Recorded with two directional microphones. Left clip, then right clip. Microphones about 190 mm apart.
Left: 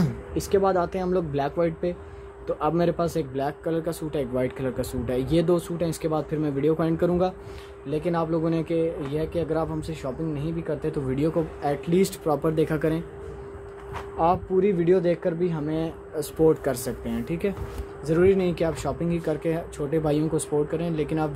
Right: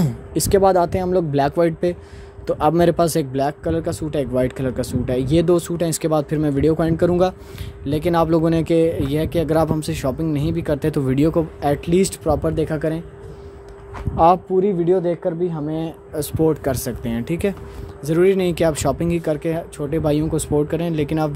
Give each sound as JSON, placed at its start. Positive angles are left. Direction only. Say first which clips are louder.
{"t": 0.3, "sound": "speech", "louder": "right 7 dB", "side_deg": -40}
{"t": 7.8, "sound": "speech", "louder": "right 8 dB", "side_deg": -45}
{"t": 14.1, "sound": "speech", "louder": "right 9 dB", "side_deg": -45}
{"t": 14.6, "sound": "speech", "louder": "right 3 dB", "side_deg": -10}
{"t": 15.8, "sound": "speech", "louder": "right 4 dB", "side_deg": -30}